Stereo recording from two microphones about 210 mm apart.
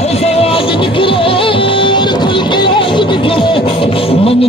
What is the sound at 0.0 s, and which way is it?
Music, 30° left (ahead or behind).